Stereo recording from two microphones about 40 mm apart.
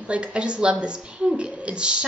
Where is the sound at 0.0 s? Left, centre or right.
Right.